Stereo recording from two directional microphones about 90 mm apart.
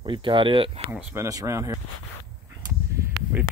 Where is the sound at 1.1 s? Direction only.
35° right (ahead or behind).